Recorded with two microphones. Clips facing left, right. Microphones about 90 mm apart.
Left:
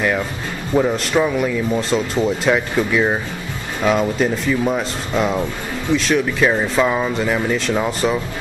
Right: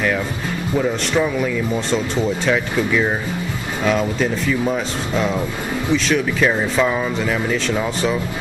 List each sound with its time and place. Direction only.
0.7 s speech: 15° left (ahead or behind)
1.1 s speech: 5° left (ahead or behind)